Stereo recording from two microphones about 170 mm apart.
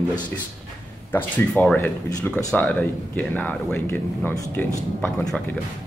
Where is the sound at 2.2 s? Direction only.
10° left (ahead or behind).